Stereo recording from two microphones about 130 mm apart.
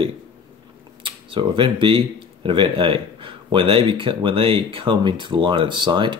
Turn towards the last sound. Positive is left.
turn(degrees=-35)  # may be behind; listen again after turning